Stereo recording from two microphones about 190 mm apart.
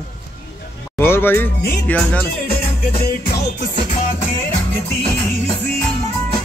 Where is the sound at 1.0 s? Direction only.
10° left (ahead or behind).